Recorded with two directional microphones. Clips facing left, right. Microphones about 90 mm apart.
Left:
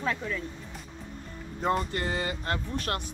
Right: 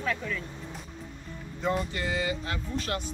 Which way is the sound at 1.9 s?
45° left (ahead or behind).